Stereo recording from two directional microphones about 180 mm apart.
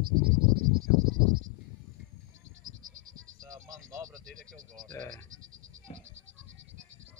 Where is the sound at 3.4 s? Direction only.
20° right (ahead or behind).